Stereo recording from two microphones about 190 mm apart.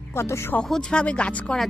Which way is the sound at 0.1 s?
15° left (ahead or behind).